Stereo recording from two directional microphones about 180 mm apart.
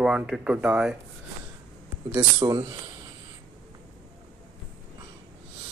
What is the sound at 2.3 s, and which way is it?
Speech, 25° right (ahead or behind).